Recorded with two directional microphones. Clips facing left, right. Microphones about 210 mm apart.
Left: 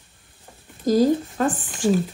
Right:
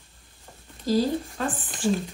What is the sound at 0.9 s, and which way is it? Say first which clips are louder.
Speech: left 6 dB; 45° left (ahead or behind).